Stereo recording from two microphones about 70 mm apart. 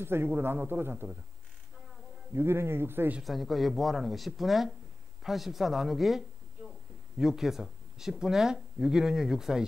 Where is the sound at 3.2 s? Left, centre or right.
Centre.